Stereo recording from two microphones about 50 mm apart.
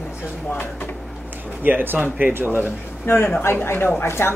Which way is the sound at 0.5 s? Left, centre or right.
Left.